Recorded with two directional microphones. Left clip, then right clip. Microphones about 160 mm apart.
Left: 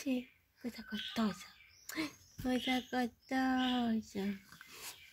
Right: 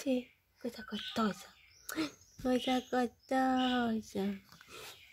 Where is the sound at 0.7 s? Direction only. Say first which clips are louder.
Right 2 dB; 40° right (ahead or behind).